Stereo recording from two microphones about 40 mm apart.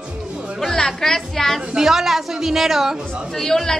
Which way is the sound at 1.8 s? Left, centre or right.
Centre.